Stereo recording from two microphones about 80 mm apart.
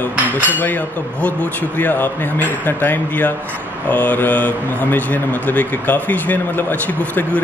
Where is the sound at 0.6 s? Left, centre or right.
Left.